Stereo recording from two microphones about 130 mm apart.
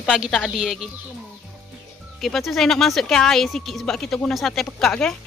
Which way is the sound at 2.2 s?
Centre (ahead or behind).